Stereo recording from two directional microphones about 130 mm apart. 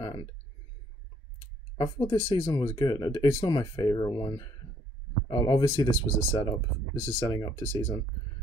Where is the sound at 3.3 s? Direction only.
25° left (ahead or behind).